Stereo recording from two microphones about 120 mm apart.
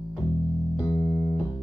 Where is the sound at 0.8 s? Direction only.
30° left (ahead or behind).